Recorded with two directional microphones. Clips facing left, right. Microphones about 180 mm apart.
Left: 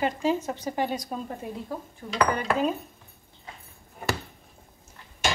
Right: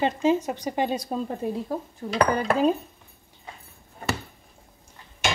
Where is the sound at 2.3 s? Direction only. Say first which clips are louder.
Right 4 dB; 40° right (ahead or behind).